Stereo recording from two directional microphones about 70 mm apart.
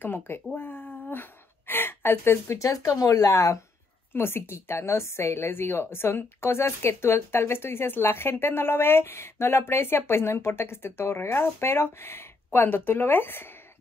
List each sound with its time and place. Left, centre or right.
0.0 s a woman's voice: left
4.1 s a woman's voice: left